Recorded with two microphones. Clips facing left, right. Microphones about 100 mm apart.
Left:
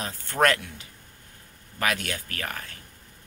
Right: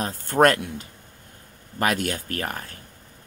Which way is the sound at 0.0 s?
45° right (ahead or behind).